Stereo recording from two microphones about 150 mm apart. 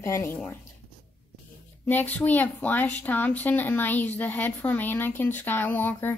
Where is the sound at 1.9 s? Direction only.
10° left (ahead or behind).